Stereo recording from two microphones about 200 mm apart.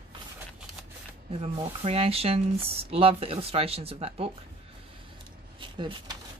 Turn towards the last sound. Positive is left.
turn(degrees=-25)  # may be behind; listen again after turning